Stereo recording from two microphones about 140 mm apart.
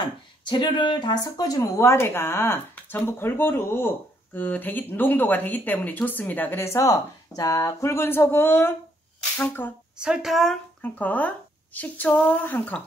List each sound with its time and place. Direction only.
0.0 s speech: 35° left (ahead or behind); by 9.7 s 15° left (ahead or behind)
9.9 s speech: 5° right (ahead or behind)
10.8 s speech: 10° left (ahead or behind)